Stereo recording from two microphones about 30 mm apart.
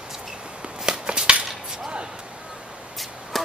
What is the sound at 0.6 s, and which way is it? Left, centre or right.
Walk, right.